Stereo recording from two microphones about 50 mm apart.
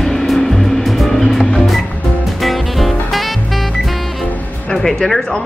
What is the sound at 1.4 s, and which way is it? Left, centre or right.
Music, centre.